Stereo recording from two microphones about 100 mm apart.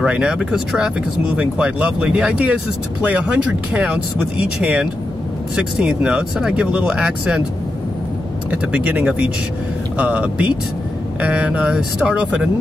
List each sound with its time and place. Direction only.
0.0 s speech: 10° right (ahead or behind)
8.5 s speech: 15° right (ahead or behind)